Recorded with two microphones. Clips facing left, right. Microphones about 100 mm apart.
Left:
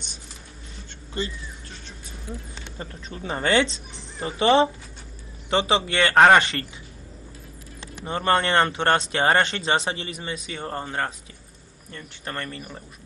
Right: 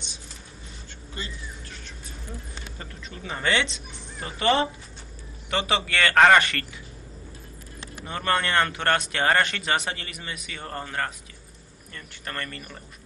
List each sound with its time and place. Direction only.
2.6 s speech: 30° left (ahead or behind)
8.0 s speech: 25° left (ahead or behind)